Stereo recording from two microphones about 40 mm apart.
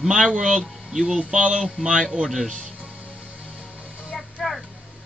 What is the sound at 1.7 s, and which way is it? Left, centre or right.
Speech, centre.